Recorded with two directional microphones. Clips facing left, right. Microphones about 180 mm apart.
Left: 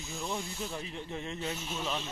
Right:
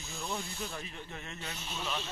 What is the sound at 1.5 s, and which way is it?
Speech, 10° left (ahead or behind).